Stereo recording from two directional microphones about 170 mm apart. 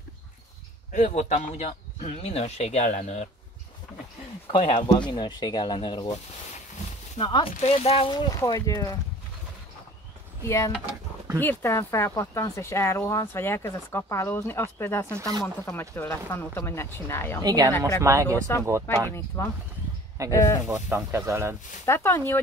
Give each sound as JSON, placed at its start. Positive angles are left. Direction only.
{"t": 0.9, "sound": "speech", "side_deg": 40}
{"t": 4.5, "sound": "speech", "side_deg": 30}
{"t": 7.2, "sound": "speech", "side_deg": 25}
{"t": 7.6, "sound": "speech", "side_deg": 40}
{"t": 10.4, "sound": "speech", "side_deg": 15}
{"t": 17.4, "sound": "speech", "side_deg": -20}
{"t": 17.6, "sound": "speech", "side_deg": 15}
{"t": 18.0, "sound": "speech", "side_deg": -15}
{"t": 19.1, "sound": "speech", "side_deg": 15}
{"t": 20.6, "sound": "speech", "side_deg": -15}
{"t": 21.8, "sound": "speech", "side_deg": 15}